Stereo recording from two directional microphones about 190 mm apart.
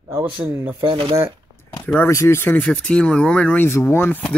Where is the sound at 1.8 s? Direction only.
10° left (ahead or behind).